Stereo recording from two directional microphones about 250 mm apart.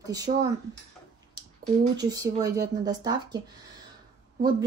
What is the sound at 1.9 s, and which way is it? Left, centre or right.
Speech, centre.